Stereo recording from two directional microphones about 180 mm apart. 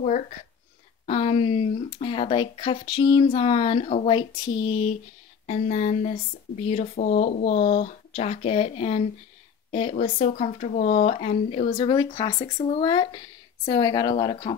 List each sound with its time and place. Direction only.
1.0 s speech: 35° left (ahead or behind)
11.7 s speech: 25° left (ahead or behind)
12.5 s speech: 35° left (ahead or behind)
12.8 s speech: 25° left (ahead or behind)